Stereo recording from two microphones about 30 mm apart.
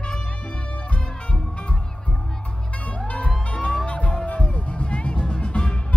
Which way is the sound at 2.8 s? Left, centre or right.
Left.